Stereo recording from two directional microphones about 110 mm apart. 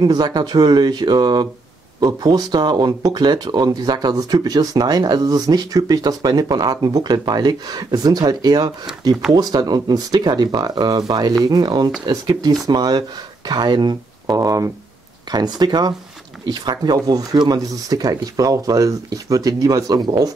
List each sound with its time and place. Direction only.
0.0 s speech: 40° right (ahead or behind)